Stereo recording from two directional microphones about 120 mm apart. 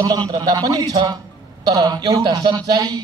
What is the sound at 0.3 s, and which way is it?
A man's voice, 35° right (ahead or behind).